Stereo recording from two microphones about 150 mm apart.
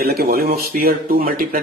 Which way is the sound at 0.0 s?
90° right.